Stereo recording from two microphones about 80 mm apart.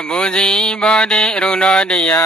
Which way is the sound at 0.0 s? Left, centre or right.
Centre.